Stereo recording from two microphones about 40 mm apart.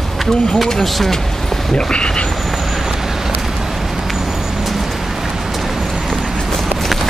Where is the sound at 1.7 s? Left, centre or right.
Left.